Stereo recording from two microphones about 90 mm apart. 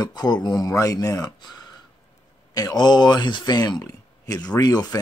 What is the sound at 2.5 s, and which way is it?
Speech, 45° left (ahead or behind).